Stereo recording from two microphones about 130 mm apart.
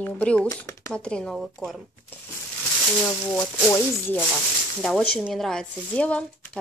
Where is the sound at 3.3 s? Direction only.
15° left (ahead or behind).